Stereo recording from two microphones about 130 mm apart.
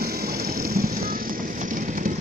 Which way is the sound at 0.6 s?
90° right.